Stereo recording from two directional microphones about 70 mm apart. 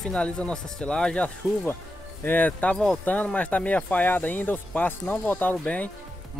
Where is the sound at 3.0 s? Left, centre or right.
Left.